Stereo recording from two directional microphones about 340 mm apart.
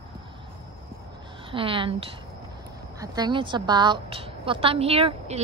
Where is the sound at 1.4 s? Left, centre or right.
Centre.